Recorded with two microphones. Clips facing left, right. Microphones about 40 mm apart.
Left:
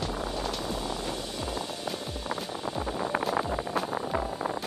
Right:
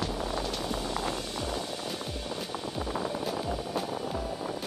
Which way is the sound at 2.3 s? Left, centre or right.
Left.